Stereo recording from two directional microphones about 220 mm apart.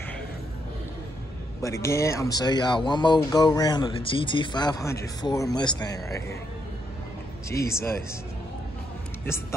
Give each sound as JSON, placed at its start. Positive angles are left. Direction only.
{"t": 1.6, "sound": "speech", "side_deg": 15}
{"t": 7.4, "sound": "speech", "side_deg": 15}